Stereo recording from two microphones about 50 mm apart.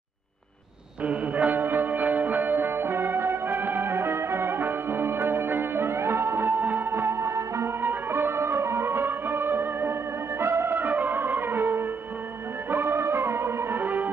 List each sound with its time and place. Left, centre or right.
1.0 s music: right
1.6 s music: right
6.6 s music: right
6.9 s music: right
7.8 s music: right
10.8 s music: right
13.7 s music: right